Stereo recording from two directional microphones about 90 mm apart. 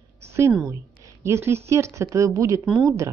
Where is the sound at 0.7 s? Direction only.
35° right (ahead or behind).